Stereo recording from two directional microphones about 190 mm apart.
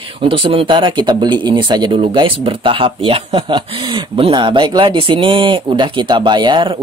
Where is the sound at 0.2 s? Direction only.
30° right (ahead or behind).